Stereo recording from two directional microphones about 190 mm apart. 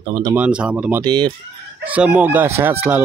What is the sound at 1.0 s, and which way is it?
Speech, 25° right (ahead or behind).